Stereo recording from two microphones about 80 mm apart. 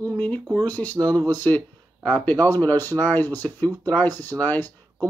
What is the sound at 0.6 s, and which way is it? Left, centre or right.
Speech, left.